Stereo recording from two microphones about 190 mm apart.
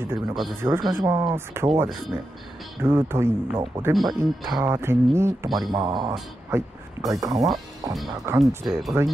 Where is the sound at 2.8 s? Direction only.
10° right (ahead or behind).